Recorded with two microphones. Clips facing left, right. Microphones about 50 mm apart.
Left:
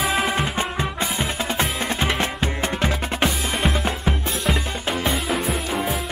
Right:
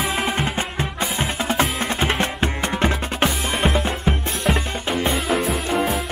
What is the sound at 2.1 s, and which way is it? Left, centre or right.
Music, right.